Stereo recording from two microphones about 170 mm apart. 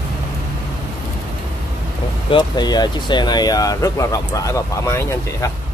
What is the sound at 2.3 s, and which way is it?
Speech, 25° left (ahead or behind).